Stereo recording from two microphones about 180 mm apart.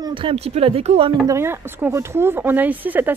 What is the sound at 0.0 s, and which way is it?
Speech, 30° right (ahead or behind).